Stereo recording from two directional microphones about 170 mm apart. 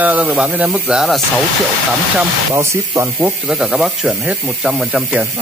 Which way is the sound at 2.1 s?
15° right (ahead or behind).